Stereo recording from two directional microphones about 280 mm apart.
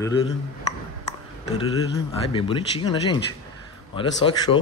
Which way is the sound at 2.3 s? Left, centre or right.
Centre.